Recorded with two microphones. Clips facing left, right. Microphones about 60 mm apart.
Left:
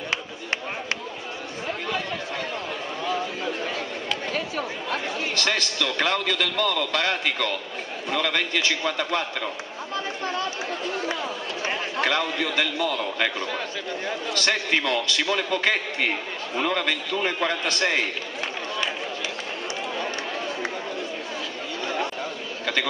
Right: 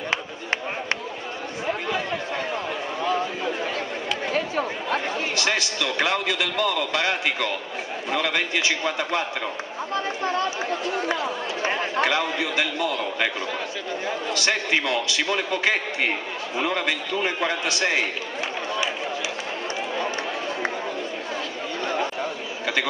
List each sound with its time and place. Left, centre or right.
3.0 s chatter: centre
4.9 s a man's voice: centre
11.7 s a man's voice: centre
21.8 s a sound: centre